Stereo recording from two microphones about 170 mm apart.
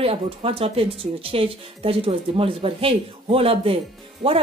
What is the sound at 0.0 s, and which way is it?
Speech, 35° right (ahead or behind).